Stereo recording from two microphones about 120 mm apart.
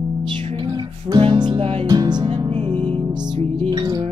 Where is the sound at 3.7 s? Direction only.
35° right (ahead or behind).